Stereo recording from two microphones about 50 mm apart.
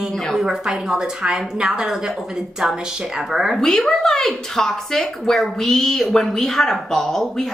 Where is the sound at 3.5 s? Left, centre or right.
Centre.